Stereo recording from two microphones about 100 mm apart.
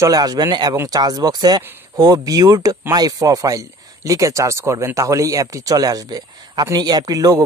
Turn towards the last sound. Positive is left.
turn(degrees=-40)  # may be behind; listen again after turning